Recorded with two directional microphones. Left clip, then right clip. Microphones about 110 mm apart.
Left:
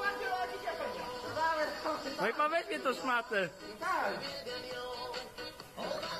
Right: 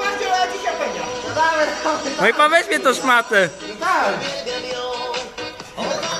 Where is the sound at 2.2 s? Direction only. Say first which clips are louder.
Right 18 dB; centre (ahead or behind).